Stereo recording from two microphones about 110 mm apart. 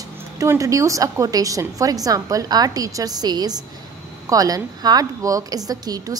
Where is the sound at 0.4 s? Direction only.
30° right (ahead or behind).